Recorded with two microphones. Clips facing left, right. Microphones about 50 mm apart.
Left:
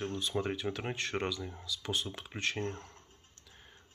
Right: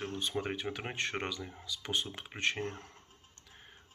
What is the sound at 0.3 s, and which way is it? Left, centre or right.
Speech, centre.